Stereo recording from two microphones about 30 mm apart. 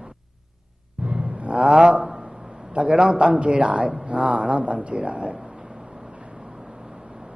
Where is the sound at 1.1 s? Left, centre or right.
Right.